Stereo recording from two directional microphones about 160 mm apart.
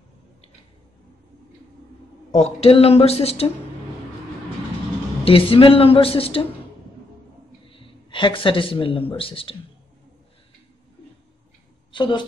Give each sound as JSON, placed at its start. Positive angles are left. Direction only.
{"t": 2.3, "sound": "speech", "side_deg": 40}
{"t": 5.2, "sound": "speech", "side_deg": 35}
{"t": 7.7, "sound": "speech", "side_deg": 35}
{"t": 11.9, "sound": "speech", "side_deg": 30}